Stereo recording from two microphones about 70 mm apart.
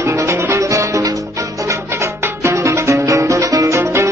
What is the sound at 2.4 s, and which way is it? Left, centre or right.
Music, right.